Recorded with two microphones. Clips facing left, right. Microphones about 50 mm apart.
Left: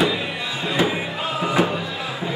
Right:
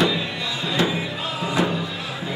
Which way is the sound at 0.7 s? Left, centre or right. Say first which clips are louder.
Left 1 dB; left.